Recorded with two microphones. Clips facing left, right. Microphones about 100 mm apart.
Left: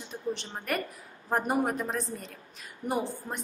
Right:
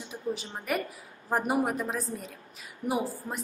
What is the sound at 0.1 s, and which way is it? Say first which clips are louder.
A woman's voice: even; 5° right (ahead or behind).